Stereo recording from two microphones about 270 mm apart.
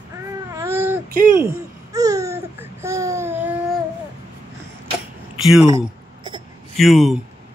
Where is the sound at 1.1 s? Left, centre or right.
Right.